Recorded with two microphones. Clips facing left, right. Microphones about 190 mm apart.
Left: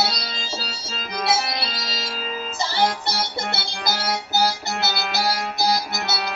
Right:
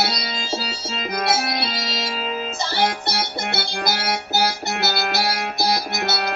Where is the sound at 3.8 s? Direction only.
60° right (ahead or behind).